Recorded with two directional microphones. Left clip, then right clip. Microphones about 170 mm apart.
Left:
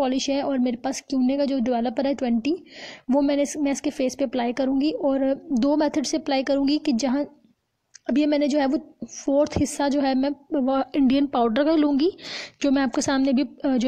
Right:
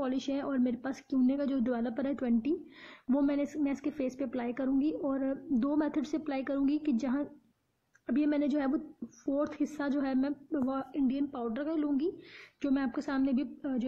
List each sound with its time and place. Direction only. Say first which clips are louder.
0.0 s a woman's voice: left 11 dB; 35° left (ahead or behind); by 13.8 s 50° left (ahead or behind)